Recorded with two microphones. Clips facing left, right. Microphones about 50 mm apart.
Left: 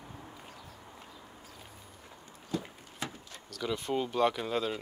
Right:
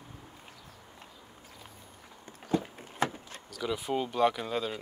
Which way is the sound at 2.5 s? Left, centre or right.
Right.